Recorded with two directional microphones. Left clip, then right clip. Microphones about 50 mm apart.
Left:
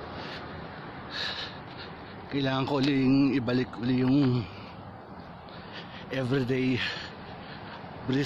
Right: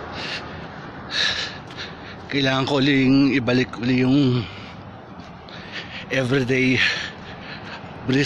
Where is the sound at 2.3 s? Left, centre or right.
Centre.